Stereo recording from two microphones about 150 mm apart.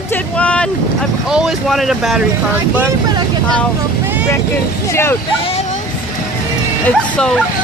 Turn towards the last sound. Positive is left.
turn(degrees=5)  # may be behind; listen again after turning